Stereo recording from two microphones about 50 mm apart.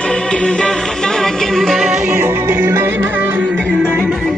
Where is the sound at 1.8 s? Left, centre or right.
Centre.